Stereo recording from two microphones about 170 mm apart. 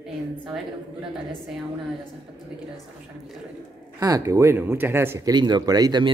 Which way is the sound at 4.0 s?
20° right (ahead or behind).